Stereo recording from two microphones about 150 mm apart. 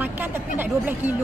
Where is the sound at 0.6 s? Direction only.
10° right (ahead or behind).